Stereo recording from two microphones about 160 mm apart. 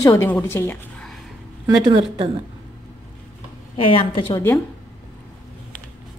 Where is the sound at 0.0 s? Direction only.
15° left (ahead or behind).